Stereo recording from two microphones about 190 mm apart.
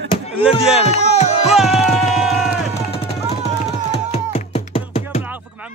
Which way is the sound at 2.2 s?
Centre (ahead or behind).